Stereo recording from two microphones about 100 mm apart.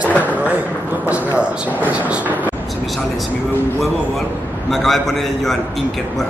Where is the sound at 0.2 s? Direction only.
15° right (ahead or behind).